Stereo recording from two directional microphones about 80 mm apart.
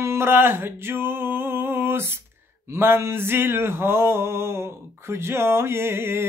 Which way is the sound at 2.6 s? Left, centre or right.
Right.